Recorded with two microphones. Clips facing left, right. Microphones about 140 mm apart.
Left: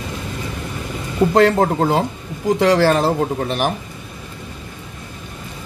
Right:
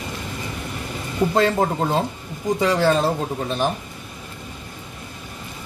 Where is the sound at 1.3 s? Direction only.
70° left (ahead or behind).